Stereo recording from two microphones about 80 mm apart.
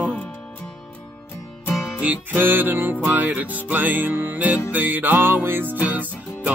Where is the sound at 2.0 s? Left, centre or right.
Right.